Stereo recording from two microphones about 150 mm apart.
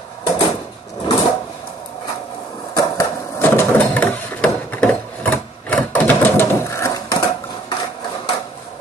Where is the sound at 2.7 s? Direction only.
25° left (ahead or behind).